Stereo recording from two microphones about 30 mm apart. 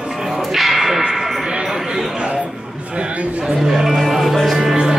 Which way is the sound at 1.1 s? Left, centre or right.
Centre.